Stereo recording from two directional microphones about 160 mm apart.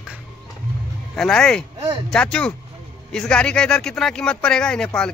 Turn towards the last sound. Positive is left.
turn(degrees=5)  # may be behind; listen again after turning